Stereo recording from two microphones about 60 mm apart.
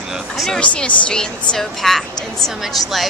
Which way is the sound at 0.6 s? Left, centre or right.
Left.